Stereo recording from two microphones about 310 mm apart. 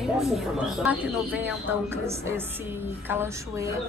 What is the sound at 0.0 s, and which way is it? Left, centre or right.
A woman's voice, centre.